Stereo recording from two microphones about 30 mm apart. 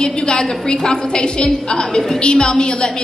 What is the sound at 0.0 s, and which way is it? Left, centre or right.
A woman's voice, left.